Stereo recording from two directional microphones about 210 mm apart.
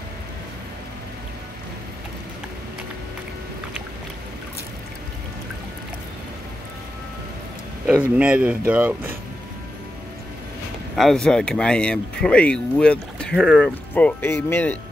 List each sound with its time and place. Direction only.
8.2 s speech: 5° right (ahead or behind)
11.0 s speech: centre (ahead or behind)